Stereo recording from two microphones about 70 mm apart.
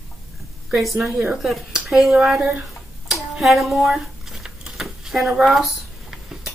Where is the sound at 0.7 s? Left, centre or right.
Centre.